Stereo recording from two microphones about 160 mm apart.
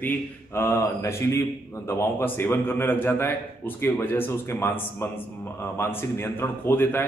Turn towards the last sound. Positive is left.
turn(degrees=15)  # may be behind; listen again after turning